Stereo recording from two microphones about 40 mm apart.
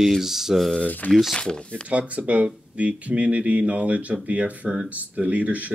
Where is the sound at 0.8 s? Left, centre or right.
Left.